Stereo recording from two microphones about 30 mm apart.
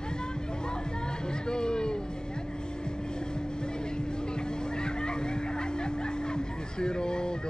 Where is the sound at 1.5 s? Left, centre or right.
Left.